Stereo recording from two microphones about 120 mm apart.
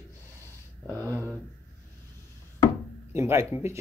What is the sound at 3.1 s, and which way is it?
Speech, 25° right (ahead or behind).